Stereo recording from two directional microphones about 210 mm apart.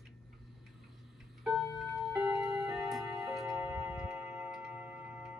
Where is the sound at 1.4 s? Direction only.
Centre (ahead or behind).